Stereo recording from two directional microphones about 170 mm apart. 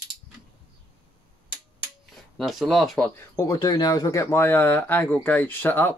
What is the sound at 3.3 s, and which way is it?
Speech, 20° left (ahead or behind).